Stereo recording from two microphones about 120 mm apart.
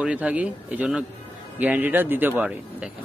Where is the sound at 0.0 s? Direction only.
10° right (ahead or behind).